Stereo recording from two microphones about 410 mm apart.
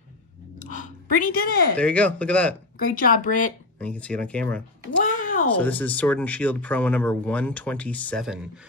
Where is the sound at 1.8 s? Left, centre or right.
Centre.